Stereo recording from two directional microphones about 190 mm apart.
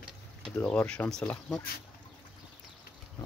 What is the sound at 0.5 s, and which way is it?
Speech, 10° left (ahead or behind).